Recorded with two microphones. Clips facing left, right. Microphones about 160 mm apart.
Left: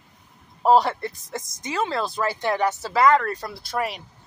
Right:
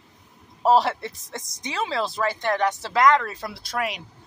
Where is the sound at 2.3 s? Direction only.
10° left (ahead or behind).